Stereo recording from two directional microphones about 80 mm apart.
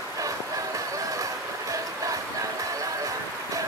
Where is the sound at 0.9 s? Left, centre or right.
Right.